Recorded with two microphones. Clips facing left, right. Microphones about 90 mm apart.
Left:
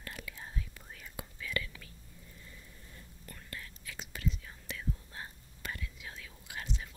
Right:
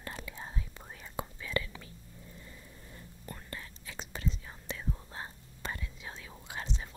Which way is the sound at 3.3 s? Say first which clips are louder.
Right 3 dB; 30° right (ahead or behind).